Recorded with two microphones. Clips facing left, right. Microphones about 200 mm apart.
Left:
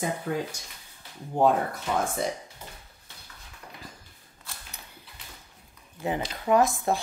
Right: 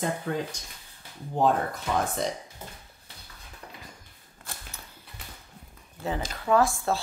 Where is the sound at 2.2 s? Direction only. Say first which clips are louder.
Even; 5° left (ahead or behind).